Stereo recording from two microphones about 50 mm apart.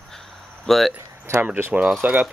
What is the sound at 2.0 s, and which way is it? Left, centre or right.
Speech, right.